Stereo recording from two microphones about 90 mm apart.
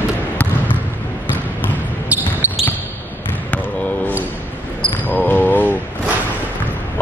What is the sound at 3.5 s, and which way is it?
Basketball bounce, 15° left (ahead or behind).